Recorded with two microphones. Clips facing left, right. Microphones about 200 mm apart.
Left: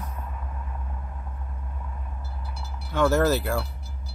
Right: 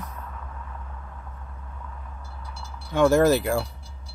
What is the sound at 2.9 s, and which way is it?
Speech, 15° right (ahead or behind).